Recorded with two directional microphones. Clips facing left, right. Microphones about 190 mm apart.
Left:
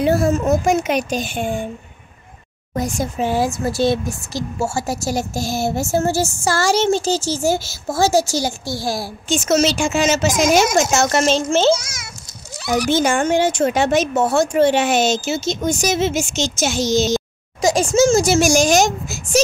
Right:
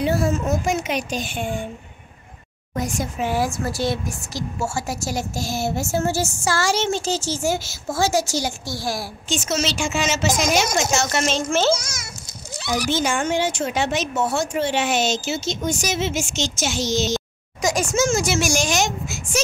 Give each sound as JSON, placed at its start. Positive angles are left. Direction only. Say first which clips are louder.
{"t": 0.0, "sound": "speech", "louder": "left 5 dB", "side_deg": 50}
{"t": 2.7, "sound": "speech", "louder": "left 4 dB", "side_deg": 35}
{"t": 9.3, "sound": "speech", "louder": "left 7 dB", "side_deg": 45}
{"t": 12.7, "sound": "speech", "louder": "left 5 dB", "side_deg": 55}
{"t": 17.6, "sound": "speech", "louder": "left 6 dB", "side_deg": 30}